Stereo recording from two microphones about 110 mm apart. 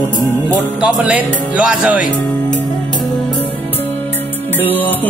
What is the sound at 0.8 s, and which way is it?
Speech, 5° right (ahead or behind).